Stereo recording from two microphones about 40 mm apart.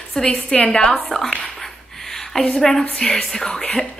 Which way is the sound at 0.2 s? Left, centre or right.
Centre.